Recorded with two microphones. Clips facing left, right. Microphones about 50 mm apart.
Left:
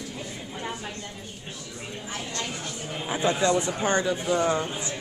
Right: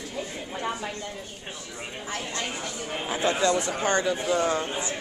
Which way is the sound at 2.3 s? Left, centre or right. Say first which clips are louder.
Right 1 dB; right.